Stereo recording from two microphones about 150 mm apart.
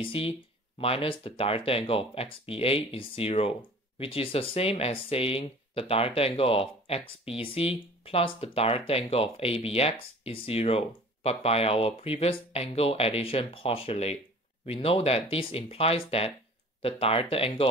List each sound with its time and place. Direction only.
0.0 s speech: 40° left (ahead or behind)